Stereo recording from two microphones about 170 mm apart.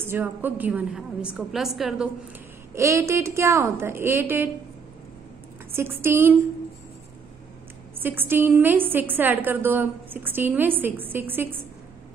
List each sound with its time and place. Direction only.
0.0 s a woman's voice: 15° right (ahead or behind)
2.7 s a woman's voice: 15° right (ahead or behind)
5.8 s a woman's voice: 15° right (ahead or behind)
8.0 s a woman's voice: 10° right (ahead or behind)